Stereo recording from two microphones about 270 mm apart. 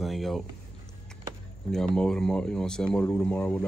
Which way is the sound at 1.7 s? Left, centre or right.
Centre.